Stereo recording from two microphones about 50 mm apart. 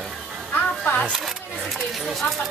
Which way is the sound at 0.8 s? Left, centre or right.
Left.